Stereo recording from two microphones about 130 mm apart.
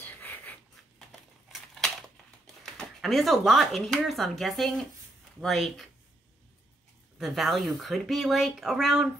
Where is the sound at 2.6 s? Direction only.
Centre (ahead or behind).